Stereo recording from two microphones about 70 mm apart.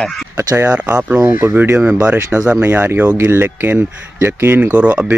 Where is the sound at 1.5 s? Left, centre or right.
Right.